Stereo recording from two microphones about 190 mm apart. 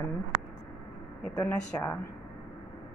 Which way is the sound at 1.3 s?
10° left (ahead or behind).